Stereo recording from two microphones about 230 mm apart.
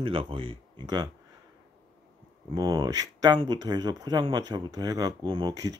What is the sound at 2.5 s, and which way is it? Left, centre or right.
Speech, centre.